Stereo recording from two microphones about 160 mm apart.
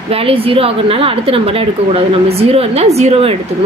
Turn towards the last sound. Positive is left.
turn(degrees=-40)  # may be behind; listen again after turning